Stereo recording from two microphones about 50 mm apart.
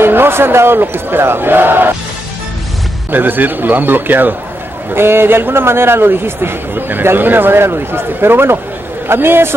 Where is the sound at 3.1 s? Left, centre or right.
Right.